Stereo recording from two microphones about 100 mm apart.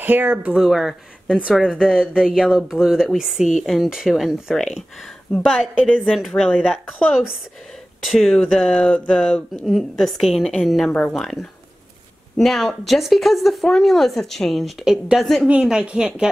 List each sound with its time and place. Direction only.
0.0 s speech: 20° right (ahead or behind)
0.5 s speech: centre (ahead or behind)
5.3 s a woman's voice: 5° left (ahead or behind)
10.9 s speech: 10° left (ahead or behind)
15.4 s speech: 10° right (ahead or behind)